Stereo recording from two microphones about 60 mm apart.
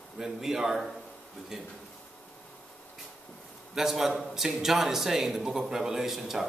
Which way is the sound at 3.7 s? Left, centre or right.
Centre.